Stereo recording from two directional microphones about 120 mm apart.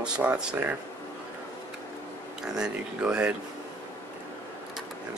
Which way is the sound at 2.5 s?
10° right (ahead or behind).